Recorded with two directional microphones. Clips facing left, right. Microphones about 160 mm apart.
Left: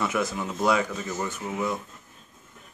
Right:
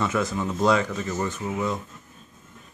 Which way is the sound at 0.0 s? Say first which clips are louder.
Right 2 dB; 10° left (ahead or behind).